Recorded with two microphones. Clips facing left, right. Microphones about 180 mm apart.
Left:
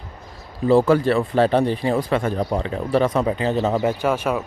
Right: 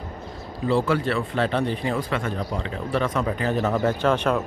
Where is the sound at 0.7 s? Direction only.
40° left (ahead or behind).